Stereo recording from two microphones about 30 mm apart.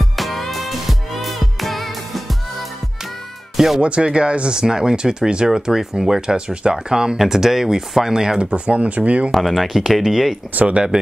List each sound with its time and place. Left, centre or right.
0.0 s music: centre
3.5 s speech: centre
3.8 s speech: right
5.5 s speech: centre
6.3 s speech: right
8.4 s speech: right
9.3 s speech: centre
10.5 s speech: right